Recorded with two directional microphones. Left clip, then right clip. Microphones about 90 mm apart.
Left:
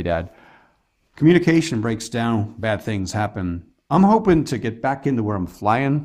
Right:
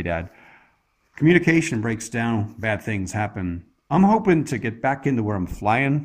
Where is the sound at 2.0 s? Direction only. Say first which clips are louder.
Left 2 dB; 30° left (ahead or behind).